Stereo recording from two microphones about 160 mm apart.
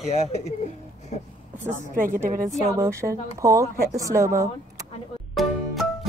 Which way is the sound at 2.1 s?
15° right (ahead or behind).